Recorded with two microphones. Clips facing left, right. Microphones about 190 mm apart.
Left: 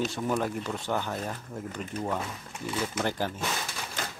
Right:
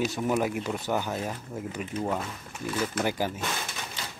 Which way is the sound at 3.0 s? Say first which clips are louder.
Right 2 dB; 10° right (ahead or behind).